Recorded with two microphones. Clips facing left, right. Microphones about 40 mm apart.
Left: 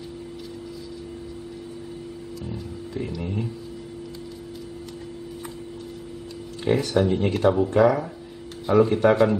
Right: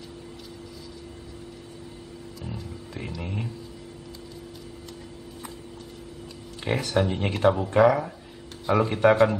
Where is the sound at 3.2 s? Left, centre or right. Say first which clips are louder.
Left 4 dB; centre.